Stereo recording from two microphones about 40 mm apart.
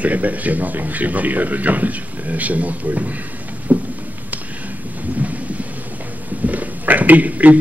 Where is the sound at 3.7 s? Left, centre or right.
Right.